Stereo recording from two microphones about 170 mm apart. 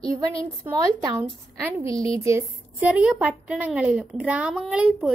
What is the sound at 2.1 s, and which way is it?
A woman's voice, 15° right (ahead or behind).